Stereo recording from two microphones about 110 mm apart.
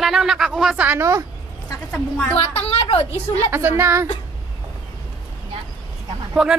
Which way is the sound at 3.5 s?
20° right (ahead or behind).